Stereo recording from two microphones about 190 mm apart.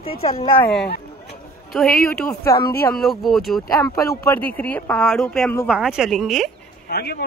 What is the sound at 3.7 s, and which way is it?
Speech, 15° left (ahead or behind).